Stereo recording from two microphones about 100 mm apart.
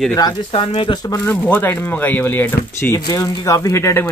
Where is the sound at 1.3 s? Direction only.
20° left (ahead or behind).